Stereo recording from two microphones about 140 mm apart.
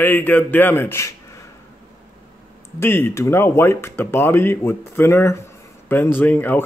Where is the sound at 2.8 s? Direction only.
15° left (ahead or behind).